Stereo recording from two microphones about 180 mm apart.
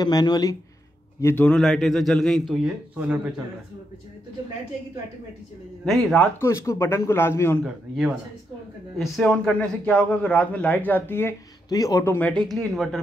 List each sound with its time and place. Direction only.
0.0 s speech: 20° left (ahead or behind)
1.2 s a man's voice: 10° left (ahead or behind)
5.9 s a man's voice: centre (ahead or behind)
6.4 s a man's voice: 15° left (ahead or behind)
7.6 s a man's voice: 5° right (ahead or behind)